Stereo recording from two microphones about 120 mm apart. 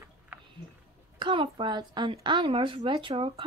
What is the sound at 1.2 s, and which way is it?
A woman's voice, 45° right (ahead or behind).